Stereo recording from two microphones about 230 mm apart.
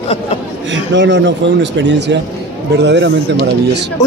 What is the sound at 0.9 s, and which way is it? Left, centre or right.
A man's voice, right.